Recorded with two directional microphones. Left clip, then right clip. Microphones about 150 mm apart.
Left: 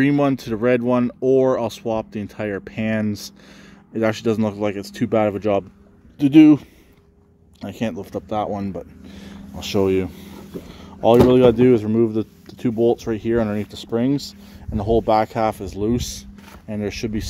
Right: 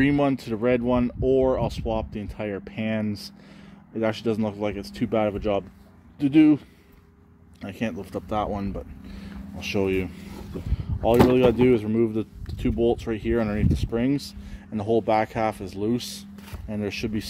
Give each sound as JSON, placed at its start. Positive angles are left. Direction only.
{"t": 0.0, "sound": "speech", "side_deg": 35}
{"t": 7.6, "sound": "speech", "side_deg": 30}
{"t": 8.1, "sound": "speech", "side_deg": 20}
{"t": 10.7, "sound": "a sound", "side_deg": 50}
{"t": 11.2, "sound": "speech", "side_deg": 45}